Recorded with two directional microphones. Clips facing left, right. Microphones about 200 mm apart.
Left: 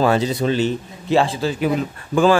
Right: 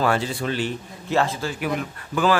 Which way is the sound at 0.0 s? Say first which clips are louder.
Left 5 dB; 20° left (ahead or behind).